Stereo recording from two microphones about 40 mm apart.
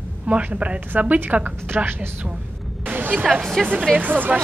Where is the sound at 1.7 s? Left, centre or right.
Right.